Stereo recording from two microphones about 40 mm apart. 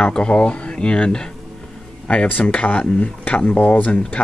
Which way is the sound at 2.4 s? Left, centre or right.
Left.